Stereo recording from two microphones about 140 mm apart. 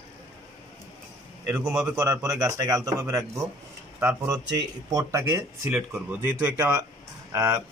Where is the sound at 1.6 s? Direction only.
10° right (ahead or behind).